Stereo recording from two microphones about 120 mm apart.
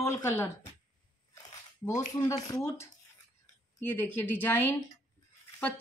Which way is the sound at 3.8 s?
15° left (ahead or behind).